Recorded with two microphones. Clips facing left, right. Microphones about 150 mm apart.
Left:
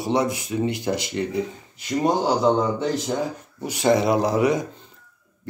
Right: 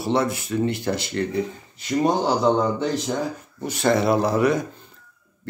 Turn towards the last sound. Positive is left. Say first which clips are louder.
# even
turn(degrees=15)  # may be behind; listen again after turning